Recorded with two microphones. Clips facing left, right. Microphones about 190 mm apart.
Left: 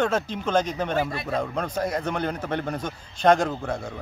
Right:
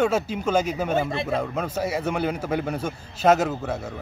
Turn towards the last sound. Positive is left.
turn(degrees=-5)  # may be behind; listen again after turning